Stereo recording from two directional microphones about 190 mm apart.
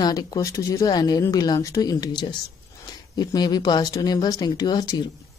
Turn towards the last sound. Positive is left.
turn(degrees=20)  # may be behind; listen again after turning